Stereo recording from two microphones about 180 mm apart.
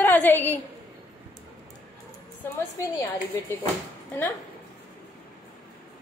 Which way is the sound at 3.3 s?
15° left (ahead or behind).